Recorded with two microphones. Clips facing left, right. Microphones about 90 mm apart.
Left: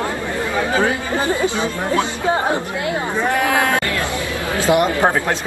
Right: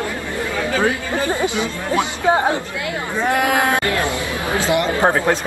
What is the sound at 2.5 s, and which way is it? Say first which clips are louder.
Speech: left 3 dB; 25° left (ahead or behind).